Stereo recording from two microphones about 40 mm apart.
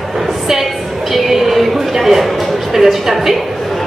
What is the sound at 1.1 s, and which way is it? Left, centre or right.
A woman's voice, centre.